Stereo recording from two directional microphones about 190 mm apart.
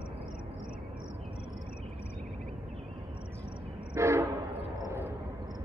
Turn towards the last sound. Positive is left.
turn(degrees=-15)  # may be behind; listen again after turning